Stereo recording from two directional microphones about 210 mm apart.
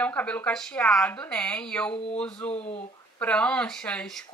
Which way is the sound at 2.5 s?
30° left (ahead or behind).